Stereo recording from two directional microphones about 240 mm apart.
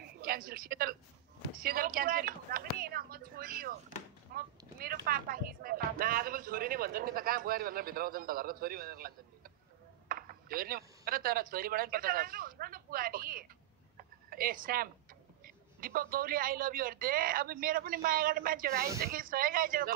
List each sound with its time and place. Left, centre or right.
0.0 s a man's voice: right
4.3 s a sound: right
4.7 s a woman's voice: right